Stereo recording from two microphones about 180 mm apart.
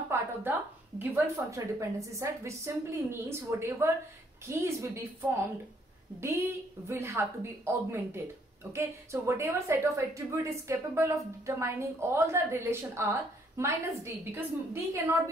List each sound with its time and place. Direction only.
0.1 s a woman's voice: 10° right (ahead or behind)